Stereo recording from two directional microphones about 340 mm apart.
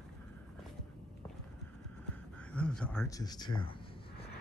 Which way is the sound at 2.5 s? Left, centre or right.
Centre.